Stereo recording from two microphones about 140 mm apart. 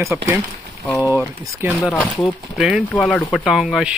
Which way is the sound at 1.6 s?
15° right (ahead or behind).